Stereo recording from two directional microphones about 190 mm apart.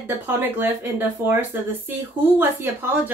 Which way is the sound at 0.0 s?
10° right (ahead or behind).